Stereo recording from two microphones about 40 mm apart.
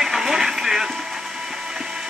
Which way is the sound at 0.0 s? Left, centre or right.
Centre.